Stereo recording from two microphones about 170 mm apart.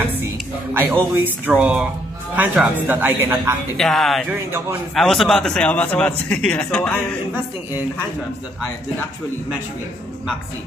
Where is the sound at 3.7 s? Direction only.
Centre (ahead or behind).